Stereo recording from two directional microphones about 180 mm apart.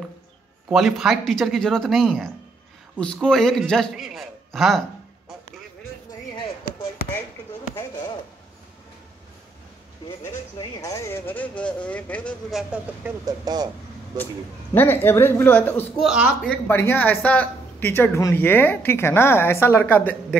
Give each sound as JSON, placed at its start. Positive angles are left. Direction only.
{"t": 0.7, "sound": "a man's voice", "side_deg": -5}
{"t": 10.8, "sound": "speech", "side_deg": 15}
{"t": 13.2, "sound": "speech", "side_deg": -20}
{"t": 14.7, "sound": "speech", "side_deg": 10}
{"t": 16.0, "sound": "a man's voice", "side_deg": 0}
{"t": 16.4, "sound": "speech", "side_deg": 10}